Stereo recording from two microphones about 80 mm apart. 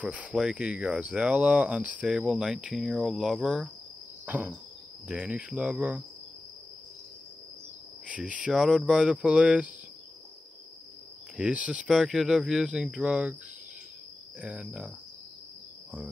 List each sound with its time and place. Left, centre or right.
0.0 s speech: centre
4.3 s cricket: right
5.0 s speech: centre
8.1 s speech: centre
11.3 s speech: centre
11.9 s speech: centre
14.4 s speech: centre